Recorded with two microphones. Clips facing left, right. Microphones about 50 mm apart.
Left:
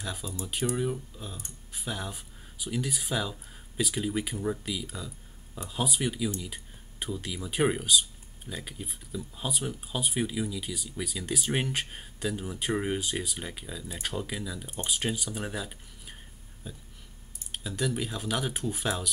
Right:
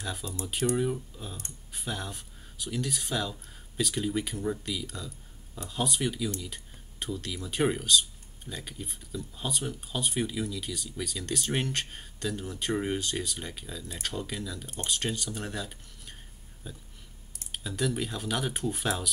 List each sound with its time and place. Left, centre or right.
0.0 s speech: centre